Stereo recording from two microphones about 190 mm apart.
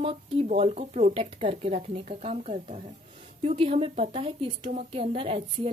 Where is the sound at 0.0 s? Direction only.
30° right (ahead or behind).